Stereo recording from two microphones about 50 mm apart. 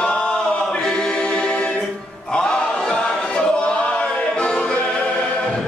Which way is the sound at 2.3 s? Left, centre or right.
Centre.